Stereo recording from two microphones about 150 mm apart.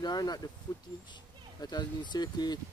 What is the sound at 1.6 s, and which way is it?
Speech, 30° left (ahead or behind).